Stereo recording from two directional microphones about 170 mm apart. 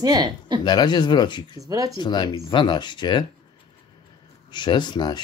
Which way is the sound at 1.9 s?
25° left (ahead or behind).